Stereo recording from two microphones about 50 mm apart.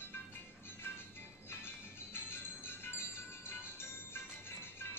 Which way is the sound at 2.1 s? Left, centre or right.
Left.